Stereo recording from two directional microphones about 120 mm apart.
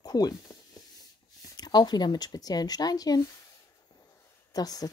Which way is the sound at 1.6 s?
35° left (ahead or behind).